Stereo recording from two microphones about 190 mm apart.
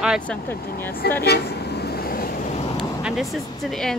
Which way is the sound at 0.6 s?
50° left (ahead or behind).